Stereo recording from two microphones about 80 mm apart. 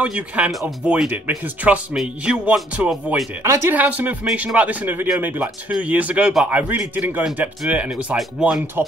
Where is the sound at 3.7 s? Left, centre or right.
Centre.